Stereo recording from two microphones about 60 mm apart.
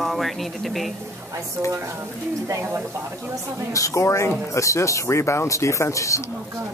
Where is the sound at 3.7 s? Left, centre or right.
Left.